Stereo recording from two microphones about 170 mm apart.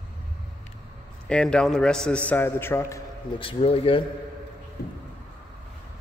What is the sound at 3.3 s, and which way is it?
Speech, 35° left (ahead or behind).